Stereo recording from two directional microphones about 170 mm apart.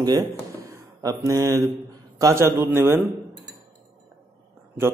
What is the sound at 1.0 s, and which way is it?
Mantra, 20° right (ahead or behind).